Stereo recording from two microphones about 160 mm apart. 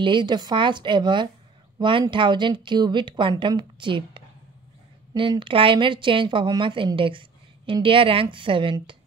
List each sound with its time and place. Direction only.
0.0 s a woman's voice: 30° right (ahead or behind)